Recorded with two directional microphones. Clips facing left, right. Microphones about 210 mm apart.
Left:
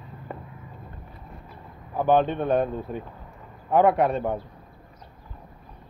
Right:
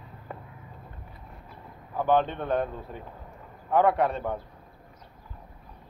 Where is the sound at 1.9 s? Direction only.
15° left (ahead or behind).